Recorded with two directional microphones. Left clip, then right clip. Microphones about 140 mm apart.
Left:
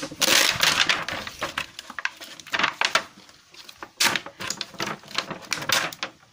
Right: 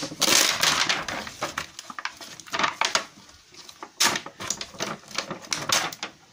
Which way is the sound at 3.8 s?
20° left (ahead or behind).